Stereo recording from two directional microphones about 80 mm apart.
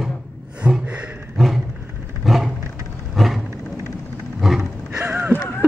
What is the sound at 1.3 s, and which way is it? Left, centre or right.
Roaring cats, centre.